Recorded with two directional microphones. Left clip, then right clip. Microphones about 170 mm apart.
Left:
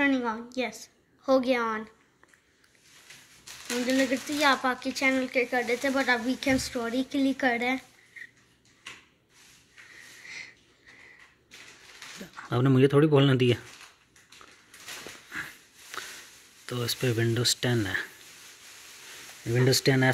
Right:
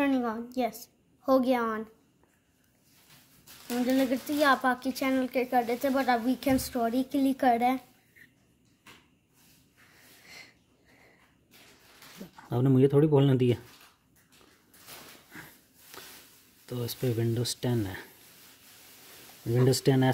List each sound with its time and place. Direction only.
0.0 s a woman's voice: 90° right
4.4 s speech: 90° right
10.2 s sniff: 90° right
12.4 s speech: 5° right (ahead or behind)
15.3 s sniff: centre (ahead or behind)
16.6 s speech: 5° right (ahead or behind)
19.4 s speech: 15° right (ahead or behind)